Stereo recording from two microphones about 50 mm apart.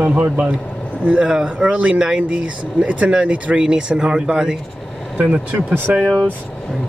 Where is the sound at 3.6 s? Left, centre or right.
Centre.